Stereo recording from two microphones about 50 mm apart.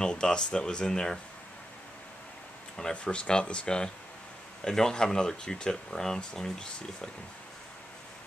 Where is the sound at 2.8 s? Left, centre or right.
Left.